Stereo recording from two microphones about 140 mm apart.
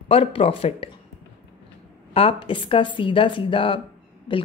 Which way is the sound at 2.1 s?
40° left (ahead or behind).